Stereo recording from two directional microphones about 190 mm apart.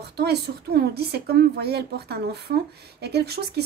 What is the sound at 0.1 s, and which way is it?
A woman's voice, 60° right (ahead or behind).